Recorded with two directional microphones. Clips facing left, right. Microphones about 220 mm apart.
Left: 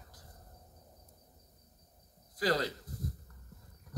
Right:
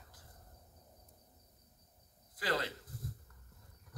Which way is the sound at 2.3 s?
40° left (ahead or behind).